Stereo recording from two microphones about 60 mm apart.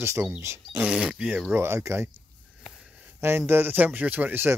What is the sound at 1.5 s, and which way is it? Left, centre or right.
Speech, right.